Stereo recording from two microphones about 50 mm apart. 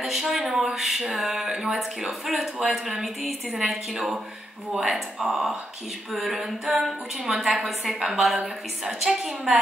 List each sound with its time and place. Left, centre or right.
0.0 s a woman's voice: centre